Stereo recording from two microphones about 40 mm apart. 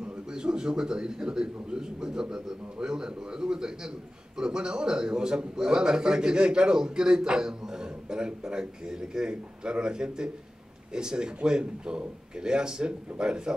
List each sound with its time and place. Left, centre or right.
0.0 s a man's voice: right